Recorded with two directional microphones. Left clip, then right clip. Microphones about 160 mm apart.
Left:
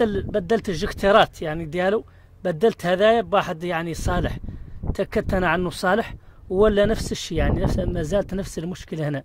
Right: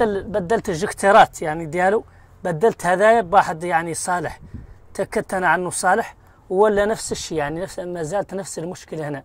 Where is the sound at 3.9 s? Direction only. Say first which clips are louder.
Right 3 dB; 55° left (ahead or behind).